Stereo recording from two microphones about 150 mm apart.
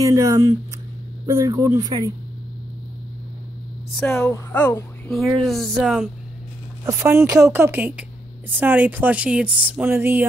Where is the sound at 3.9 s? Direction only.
5° left (ahead or behind).